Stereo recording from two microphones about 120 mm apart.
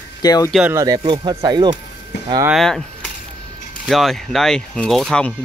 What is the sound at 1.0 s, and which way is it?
Speech, 40° right (ahead or behind).